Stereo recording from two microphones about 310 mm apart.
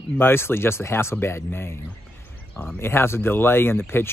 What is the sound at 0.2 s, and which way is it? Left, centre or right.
Speech, centre.